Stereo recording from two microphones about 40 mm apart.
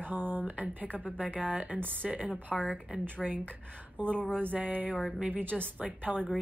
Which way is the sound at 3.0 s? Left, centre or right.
Right.